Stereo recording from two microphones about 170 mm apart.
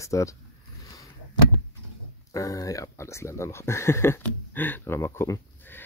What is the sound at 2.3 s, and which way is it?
Speech, 20° left (ahead or behind).